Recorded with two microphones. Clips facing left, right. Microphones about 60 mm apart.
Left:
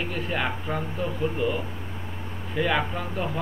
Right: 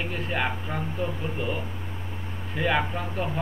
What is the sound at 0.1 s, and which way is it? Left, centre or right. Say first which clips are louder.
Speech: right 1 dB; centre.